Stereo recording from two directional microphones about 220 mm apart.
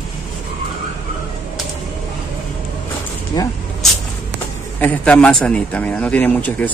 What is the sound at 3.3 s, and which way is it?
Speech, 15° left (ahead or behind).